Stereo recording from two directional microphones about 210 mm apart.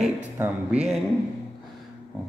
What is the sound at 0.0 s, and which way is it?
Speech, 5° right (ahead or behind).